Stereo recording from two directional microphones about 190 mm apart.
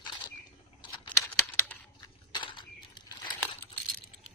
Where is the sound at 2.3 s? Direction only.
25° left (ahead or behind).